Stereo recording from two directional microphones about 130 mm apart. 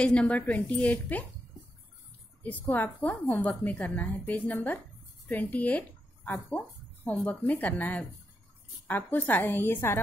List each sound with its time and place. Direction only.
0.0 s speech: 10° left (ahead or behind)
2.7 s speech: 10° left (ahead or behind)